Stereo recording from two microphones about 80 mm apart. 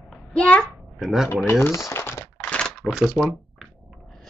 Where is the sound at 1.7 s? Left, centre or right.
Left.